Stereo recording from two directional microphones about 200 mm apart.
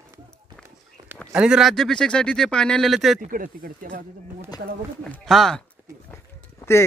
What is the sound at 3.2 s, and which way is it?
Speech, 45° right (ahead or behind).